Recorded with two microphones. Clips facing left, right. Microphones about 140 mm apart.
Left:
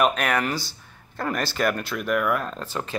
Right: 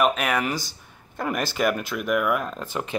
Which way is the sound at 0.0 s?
5° right (ahead or behind).